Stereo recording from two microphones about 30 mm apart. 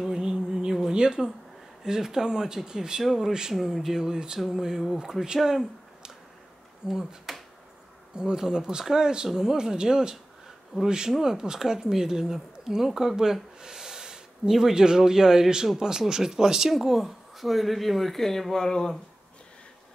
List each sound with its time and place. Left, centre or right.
0.0 s music: right
0.9 s speech: right
1.8 s speech: centre
3.5 s speech: centre
6.9 s speech: right
8.2 s speech: right
11.1 s speech: centre
16.7 s speech: centre